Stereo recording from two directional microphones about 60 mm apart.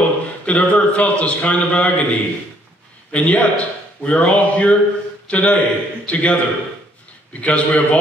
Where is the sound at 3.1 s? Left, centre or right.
Left.